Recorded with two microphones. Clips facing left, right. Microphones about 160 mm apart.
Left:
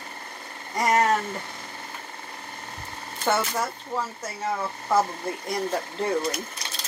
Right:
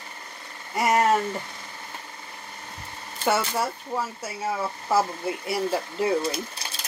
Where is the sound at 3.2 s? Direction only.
10° right (ahead or behind).